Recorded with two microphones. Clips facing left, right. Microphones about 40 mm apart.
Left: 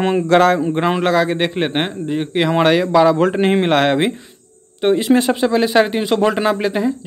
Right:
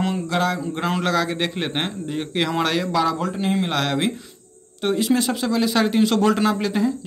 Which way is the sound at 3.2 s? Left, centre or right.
Left.